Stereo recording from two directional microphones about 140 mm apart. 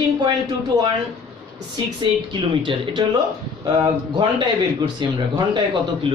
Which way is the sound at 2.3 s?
35° right (ahead or behind).